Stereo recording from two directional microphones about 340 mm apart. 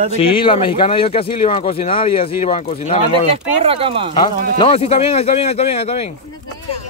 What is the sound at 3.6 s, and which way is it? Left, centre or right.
Speech, centre.